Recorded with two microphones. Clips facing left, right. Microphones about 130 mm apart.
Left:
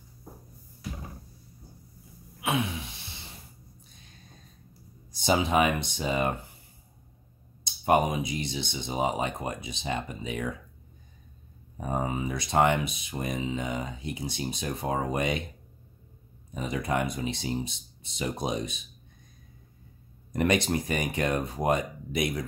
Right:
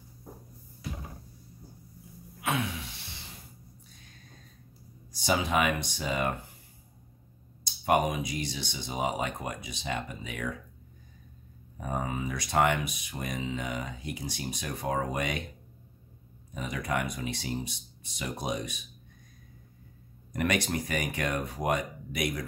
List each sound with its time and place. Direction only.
5.1 s speech: 25° left (ahead or behind)
7.8 s speech: 25° left (ahead or behind)
11.8 s speech: 25° left (ahead or behind)
16.5 s speech: 25° left (ahead or behind)
20.3 s speech: 25° left (ahead or behind)